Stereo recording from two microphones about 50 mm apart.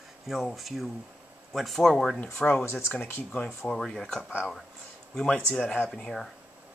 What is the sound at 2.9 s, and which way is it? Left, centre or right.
Speech, left.